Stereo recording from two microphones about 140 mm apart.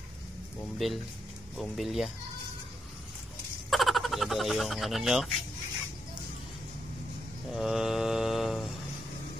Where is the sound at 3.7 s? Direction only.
Centre (ahead or behind).